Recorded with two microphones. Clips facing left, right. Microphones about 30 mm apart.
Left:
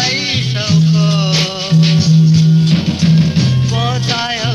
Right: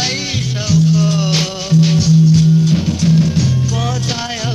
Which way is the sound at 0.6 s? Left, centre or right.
Left.